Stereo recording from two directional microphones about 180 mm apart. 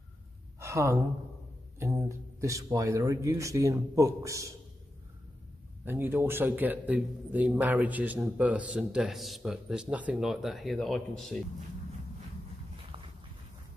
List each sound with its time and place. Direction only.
0.6 s gasp: 15° right (ahead or behind)
1.8 s a man's voice: 15° right (ahead or behind)
5.9 s a man's voice: 10° right (ahead or behind)
12.9 s dog: 30° right (ahead or behind)